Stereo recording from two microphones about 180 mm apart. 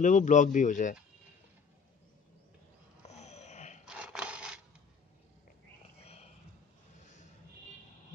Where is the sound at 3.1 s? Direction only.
40° left (ahead or behind).